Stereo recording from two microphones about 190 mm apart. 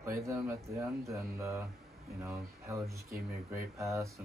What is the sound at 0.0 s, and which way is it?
Speech, 15° right (ahead or behind).